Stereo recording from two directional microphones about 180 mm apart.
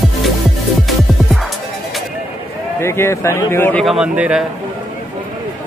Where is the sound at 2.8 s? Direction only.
15° left (ahead or behind); by 4.4 s 5° right (ahead or behind).